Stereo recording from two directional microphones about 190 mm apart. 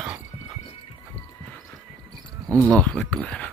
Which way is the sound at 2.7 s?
5° left (ahead or behind).